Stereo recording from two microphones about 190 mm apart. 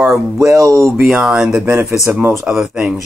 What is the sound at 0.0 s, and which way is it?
Speech, 5° right (ahead or behind).